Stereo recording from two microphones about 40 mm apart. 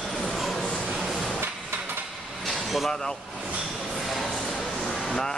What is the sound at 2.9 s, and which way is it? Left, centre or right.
Speech, centre.